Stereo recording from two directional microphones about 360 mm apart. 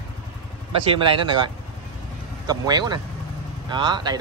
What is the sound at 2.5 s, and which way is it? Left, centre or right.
Speech, centre.